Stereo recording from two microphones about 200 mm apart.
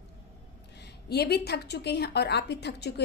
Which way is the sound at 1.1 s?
55° left (ahead or behind).